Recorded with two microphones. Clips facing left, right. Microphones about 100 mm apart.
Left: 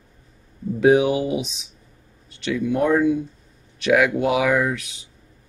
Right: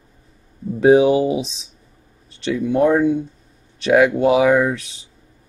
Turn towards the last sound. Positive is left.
turn(degrees=-35)  # may be behind; listen again after turning